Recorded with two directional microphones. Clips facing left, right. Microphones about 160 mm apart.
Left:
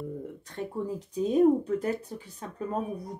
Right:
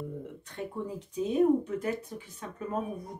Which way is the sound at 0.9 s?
35° left (ahead or behind).